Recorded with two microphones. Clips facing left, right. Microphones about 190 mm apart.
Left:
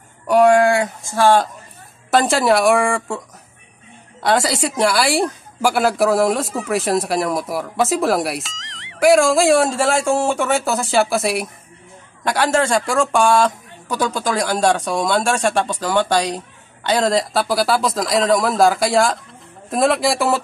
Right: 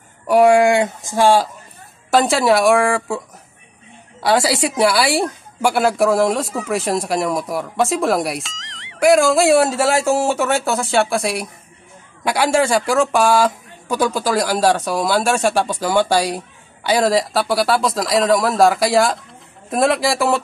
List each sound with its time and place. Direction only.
0.3 s speech: 10° right (ahead or behind)
2.0 s a woman's voice: centre (ahead or behind)
4.2 s a woman's voice: 5° right (ahead or behind)
12.3 s a woman's voice: 10° right (ahead or behind)